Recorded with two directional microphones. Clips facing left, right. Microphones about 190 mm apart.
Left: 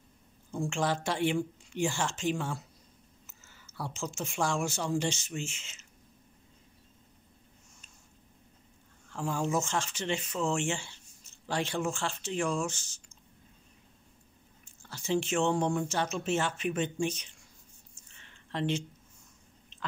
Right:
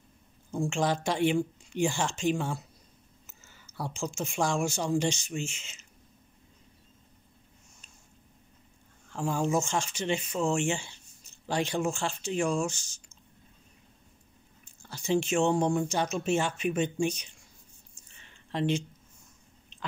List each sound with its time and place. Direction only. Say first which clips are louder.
0.6 s a woman's voice: right 3 dB; 15° right (ahead or behind)
9.1 s a woman's voice: right 3 dB; 15° right (ahead or behind)
14.8 s a woman's voice: right 3 dB; 15° right (ahead or behind)
18.5 s a woman's voice: right 3 dB; 15° right (ahead or behind)